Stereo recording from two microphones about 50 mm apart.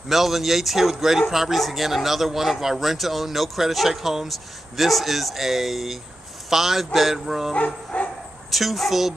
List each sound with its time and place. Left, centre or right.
0.1 s speech: centre
7.5 s bow-wow: left
8.5 s speech: centre